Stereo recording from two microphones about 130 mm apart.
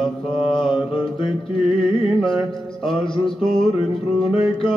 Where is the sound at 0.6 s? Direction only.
45° left (ahead or behind).